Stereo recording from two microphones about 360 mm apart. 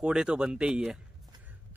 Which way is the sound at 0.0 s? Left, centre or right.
Centre.